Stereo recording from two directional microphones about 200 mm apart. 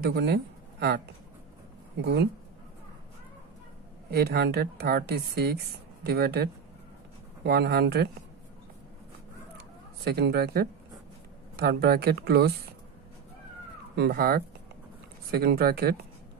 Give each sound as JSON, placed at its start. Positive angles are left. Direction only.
{"t": 0.1, "sound": "speech", "side_deg": -55}
{"t": 4.1, "sound": "speech", "side_deg": -55}
{"t": 9.6, "sound": "speech", "side_deg": -55}
{"t": 13.9, "sound": "speech", "side_deg": -50}